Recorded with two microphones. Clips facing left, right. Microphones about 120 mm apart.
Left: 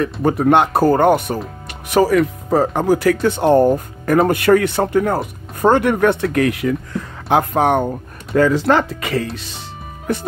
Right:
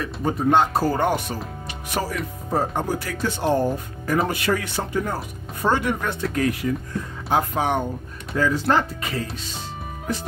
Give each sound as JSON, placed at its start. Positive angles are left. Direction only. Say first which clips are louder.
{"t": 0.0, "sound": "speech", "louder": "left 7 dB", "side_deg": 65}
{"t": 1.9, "sound": "speech", "louder": "left 13 dB", "side_deg": 90}
{"t": 8.4, "sound": "speech", "louder": "left 6 dB", "side_deg": 85}
{"t": 10.1, "sound": "speech", "louder": "left 7 dB", "side_deg": 65}